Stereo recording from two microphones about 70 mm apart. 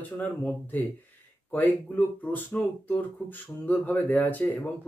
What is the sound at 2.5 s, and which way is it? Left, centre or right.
Speech, left.